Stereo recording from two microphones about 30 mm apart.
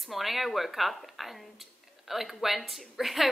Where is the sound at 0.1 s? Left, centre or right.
Centre.